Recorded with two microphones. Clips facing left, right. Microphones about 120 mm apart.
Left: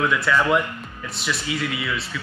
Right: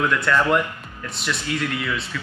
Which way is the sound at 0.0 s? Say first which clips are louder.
Even; 5° left (ahead or behind).